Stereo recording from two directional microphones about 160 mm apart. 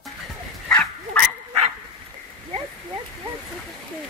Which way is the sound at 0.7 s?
10° left (ahead or behind).